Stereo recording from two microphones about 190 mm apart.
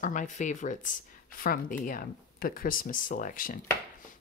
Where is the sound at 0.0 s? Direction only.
40° left (ahead or behind).